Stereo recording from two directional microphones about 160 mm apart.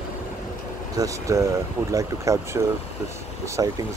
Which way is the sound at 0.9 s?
20° right (ahead or behind).